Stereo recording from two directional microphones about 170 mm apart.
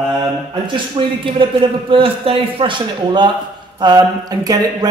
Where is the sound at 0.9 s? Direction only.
30° right (ahead or behind).